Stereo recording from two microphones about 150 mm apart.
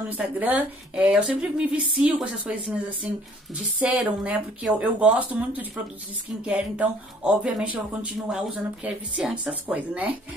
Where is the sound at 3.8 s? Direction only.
5° right (ahead or behind).